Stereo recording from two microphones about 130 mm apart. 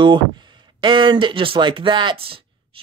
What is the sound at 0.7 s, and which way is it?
A man's voice, 40° right (ahead or behind).